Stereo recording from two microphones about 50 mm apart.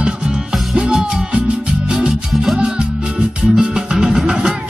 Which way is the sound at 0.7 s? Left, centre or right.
Centre.